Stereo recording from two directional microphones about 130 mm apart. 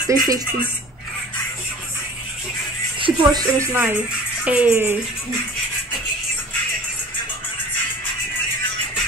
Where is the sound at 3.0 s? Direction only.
40° right (ahead or behind); by 4.9 s 15° right (ahead or behind).